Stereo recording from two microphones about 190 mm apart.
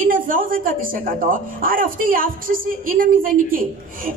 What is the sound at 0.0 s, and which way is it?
A woman's voice, 45° right (ahead or behind).